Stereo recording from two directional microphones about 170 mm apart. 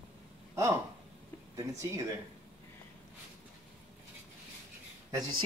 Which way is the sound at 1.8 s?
15° right (ahead or behind).